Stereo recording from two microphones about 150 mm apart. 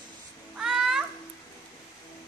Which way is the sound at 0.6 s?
Centre (ahead or behind).